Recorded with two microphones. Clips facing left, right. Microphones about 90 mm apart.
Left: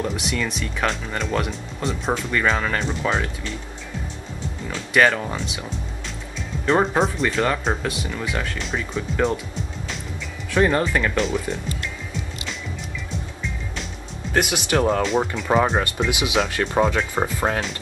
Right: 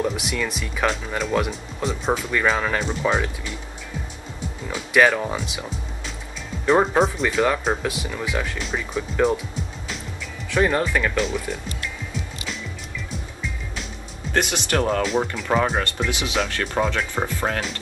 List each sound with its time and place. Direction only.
0.0 s speech: 5° right (ahead or behind)
4.6 s speech: 5° right (ahead or behind)
10.5 s speech: centre (ahead or behind)
14.3 s speech: 5° left (ahead or behind)
16.1 s speech: 15° left (ahead or behind)